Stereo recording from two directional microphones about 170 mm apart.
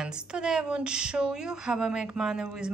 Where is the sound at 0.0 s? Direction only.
5° right (ahead or behind).